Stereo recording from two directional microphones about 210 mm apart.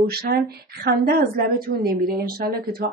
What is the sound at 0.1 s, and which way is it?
A woman's voice, 45° right (ahead or behind).